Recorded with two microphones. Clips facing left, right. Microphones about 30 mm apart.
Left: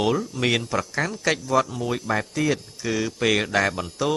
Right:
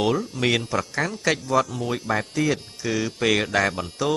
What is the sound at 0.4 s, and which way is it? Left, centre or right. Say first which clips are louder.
A woman's voice: even; centre.